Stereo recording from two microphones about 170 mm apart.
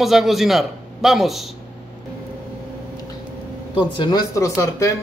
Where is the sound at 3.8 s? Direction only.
25° left (ahead or behind).